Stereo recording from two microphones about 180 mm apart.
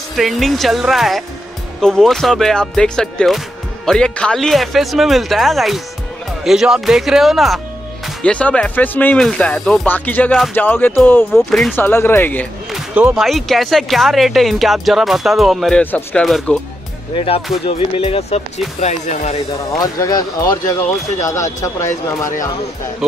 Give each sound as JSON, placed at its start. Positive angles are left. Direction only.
{"t": 0.1, "sound": "speech", "side_deg": 0}
{"t": 11.7, "sound": "speech", "side_deg": 10}
{"t": 12.7, "sound": "speech", "side_deg": -5}
{"t": 17.1, "sound": "speech", "side_deg": 30}
{"t": 19.8, "sound": "speech", "side_deg": 20}